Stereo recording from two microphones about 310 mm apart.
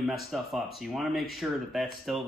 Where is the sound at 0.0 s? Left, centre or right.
Centre.